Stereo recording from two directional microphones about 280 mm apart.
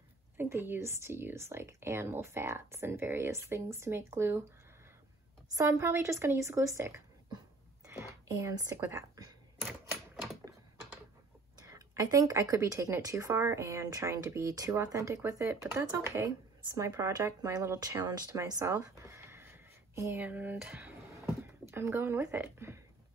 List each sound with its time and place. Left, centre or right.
0.4 s speech: centre
5.6 s speech: centre
11.6 s speech: centre